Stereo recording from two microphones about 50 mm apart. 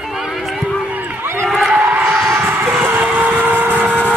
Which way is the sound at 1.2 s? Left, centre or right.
Right.